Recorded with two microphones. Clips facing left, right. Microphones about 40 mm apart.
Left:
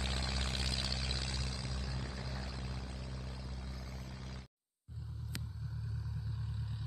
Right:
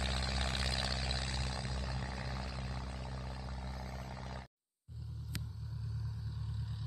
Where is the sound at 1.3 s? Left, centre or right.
Right.